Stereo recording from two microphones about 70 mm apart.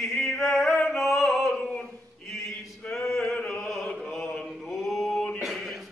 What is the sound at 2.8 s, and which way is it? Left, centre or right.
Male singing, centre.